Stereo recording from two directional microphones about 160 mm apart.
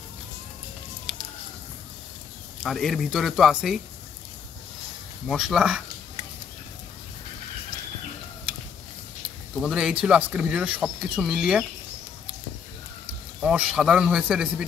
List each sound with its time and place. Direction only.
1.1 s a sound: centre (ahead or behind)
2.6 s speech: centre (ahead or behind)
5.3 s speech: 5° right (ahead or behind)
9.6 s speech: 5° right (ahead or behind)
13.4 s speech: 5° right (ahead or behind)